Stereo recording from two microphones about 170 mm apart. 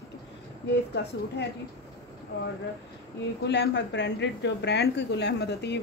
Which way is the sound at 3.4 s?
90° left.